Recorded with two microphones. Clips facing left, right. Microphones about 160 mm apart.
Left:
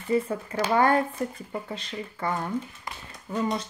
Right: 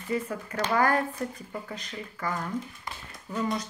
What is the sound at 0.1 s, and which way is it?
Speech, 25° left (ahead or behind).